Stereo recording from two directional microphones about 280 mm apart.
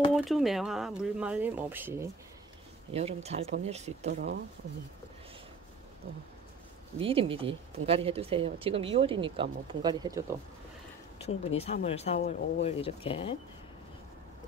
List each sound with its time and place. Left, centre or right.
0.1 s speech: centre
2.9 s speech: right
7.0 s speech: centre
11.2 s speech: left
12.2 s speech: left
12.6 s speech: centre